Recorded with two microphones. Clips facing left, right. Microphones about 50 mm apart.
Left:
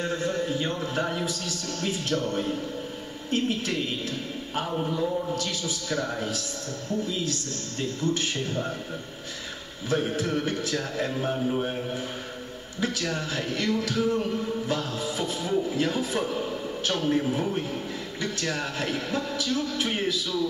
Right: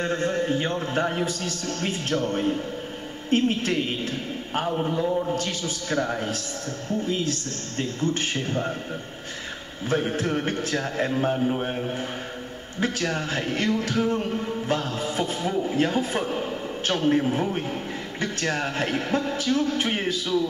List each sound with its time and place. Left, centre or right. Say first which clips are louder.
0.0 s a sound: right 3 dB; right
0.7 s speech: right 3 dB; right
4.7 s a man's voice: right 1 dB; right
5.3 s speech: right 2 dB; right
9.8 s a man's voice: right 2 dB; right
12.8 s speech: right 3 dB; right